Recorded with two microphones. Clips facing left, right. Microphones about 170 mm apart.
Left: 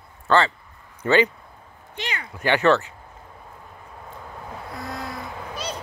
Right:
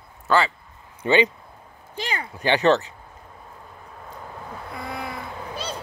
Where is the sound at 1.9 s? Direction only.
35° right (ahead or behind).